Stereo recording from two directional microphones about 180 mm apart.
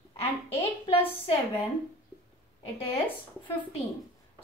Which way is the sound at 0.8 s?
30° left (ahead or behind).